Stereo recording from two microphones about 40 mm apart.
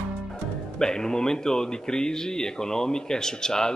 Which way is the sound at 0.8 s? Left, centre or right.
Centre.